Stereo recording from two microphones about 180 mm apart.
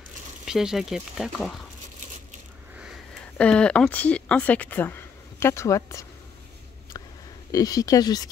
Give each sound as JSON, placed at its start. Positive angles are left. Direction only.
{"t": 0.5, "sound": "speech", "side_deg": -5}
{"t": 3.3, "sound": "speech", "side_deg": 5}
{"t": 7.5, "sound": "speech", "side_deg": 20}